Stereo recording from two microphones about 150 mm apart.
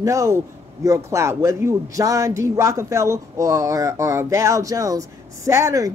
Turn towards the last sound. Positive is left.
turn(degrees=-20)  # may be behind; listen again after turning